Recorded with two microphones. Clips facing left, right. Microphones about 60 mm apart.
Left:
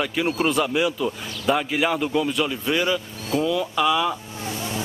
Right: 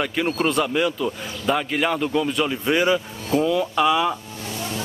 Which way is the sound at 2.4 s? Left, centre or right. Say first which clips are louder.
Right 3 dB; centre.